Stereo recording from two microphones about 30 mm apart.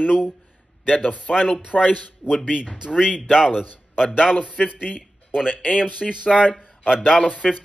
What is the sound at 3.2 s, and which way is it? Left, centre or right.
Speech, right.